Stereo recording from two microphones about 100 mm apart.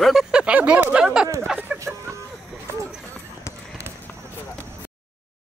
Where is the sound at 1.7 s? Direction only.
15° right (ahead or behind).